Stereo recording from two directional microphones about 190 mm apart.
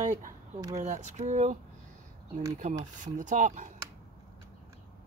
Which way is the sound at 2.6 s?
40° right (ahead or behind).